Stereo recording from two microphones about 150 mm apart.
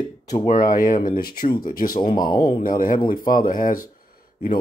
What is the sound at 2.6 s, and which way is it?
Speech, 65° left (ahead or behind).